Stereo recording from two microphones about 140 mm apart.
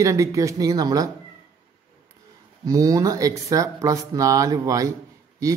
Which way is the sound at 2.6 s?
25° right (ahead or behind).